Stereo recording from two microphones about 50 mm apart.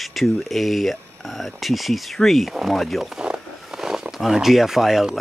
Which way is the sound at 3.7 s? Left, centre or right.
Centre.